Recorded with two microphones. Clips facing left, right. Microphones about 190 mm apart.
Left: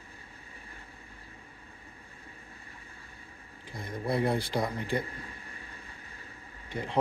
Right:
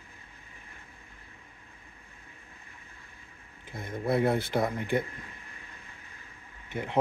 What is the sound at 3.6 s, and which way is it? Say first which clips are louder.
Speech: right 2 dB; 25° right (ahead or behind).